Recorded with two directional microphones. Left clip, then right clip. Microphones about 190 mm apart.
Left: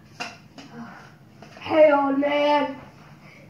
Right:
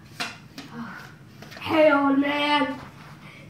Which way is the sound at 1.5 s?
45° right (ahead or behind).